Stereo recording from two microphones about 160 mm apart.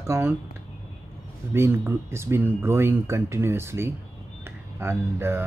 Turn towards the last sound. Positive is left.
turn(degrees=-15)  # may be behind; listen again after turning